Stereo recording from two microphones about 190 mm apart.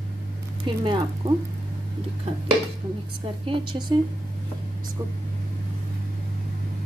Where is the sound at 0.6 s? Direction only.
25° right (ahead or behind).